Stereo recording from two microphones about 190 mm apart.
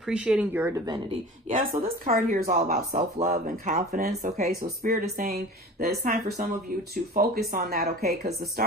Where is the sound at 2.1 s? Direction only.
50° right (ahead or behind).